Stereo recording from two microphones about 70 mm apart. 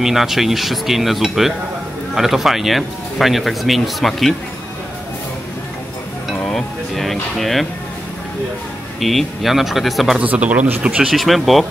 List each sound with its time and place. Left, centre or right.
0.0 s speech: centre
6.4 s a sound: centre
9.0 s speech: centre
10.2 s speech: right
11.1 s speech: centre